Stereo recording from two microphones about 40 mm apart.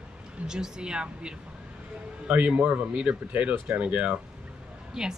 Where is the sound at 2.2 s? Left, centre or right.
Right.